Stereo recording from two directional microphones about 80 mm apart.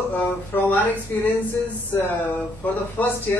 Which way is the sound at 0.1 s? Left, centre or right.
Left.